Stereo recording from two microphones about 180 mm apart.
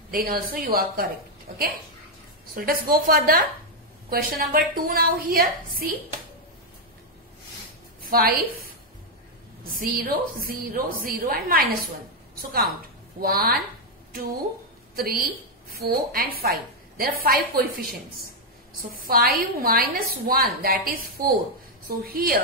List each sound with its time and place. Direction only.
0.1 s a woman's voice: 50° right (ahead or behind)
8.0 s a sound: 55° right (ahead or behind)
9.8 s a woman's voice: 55° right (ahead or behind)
13.2 s a woman's voice: 55° right (ahead or behind)
15.0 s a woman's voice: 55° right (ahead or behind)